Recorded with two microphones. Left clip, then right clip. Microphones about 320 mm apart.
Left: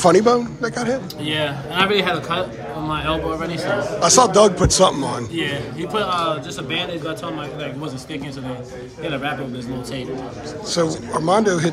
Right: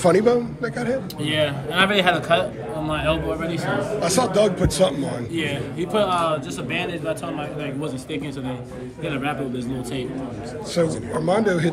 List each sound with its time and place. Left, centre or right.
0.0 s a man's voice: centre
9.0 s a man's voice: centre
10.7 s a man's voice: centre